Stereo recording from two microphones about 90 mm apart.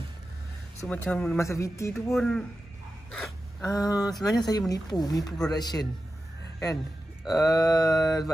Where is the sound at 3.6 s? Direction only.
45° left (ahead or behind).